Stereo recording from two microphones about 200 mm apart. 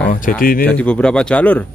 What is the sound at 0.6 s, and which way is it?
Speech, 5° left (ahead or behind).